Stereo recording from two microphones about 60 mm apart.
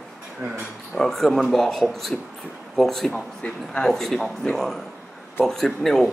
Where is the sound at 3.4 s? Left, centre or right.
Left.